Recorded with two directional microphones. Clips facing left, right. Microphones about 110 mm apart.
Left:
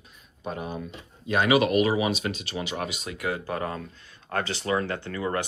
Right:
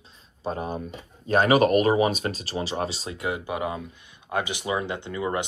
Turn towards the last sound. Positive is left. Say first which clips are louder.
# right 1 dB
turn(degrees=-20)  # may be behind; listen again after turning